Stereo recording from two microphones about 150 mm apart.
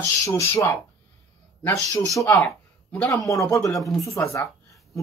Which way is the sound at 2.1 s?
20° left (ahead or behind).